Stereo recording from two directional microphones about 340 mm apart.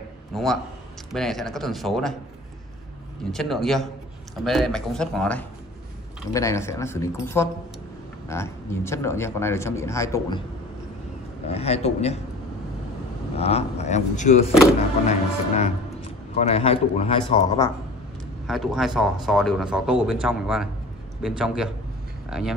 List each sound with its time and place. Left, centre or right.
0.3 s a man's voice: centre
3.3 s speech: centre
11.4 s speech: centre
13.4 s speech: centre
18.5 s speech: centre